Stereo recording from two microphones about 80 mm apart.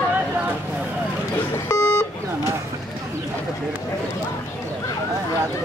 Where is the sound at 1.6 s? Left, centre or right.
Left.